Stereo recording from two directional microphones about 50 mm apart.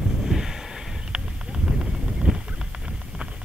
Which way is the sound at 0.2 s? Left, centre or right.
Centre.